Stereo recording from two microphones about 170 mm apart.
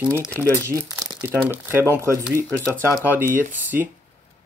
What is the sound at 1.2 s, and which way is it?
Speech, 10° right (ahead or behind).